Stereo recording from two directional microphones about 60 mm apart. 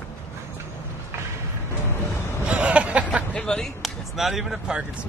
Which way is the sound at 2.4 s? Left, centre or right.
Centre.